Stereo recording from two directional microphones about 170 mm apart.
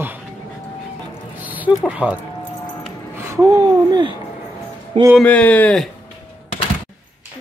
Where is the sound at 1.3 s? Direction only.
10° right (ahead or behind); by 4.1 s 25° right (ahead or behind).